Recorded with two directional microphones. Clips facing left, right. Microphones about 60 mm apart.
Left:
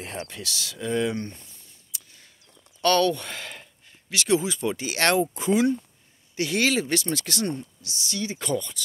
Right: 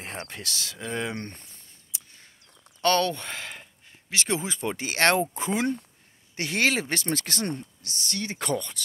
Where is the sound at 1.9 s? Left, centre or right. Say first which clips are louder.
Even; right.